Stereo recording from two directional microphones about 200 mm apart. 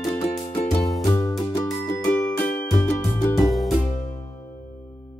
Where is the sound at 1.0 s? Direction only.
15° left (ahead or behind).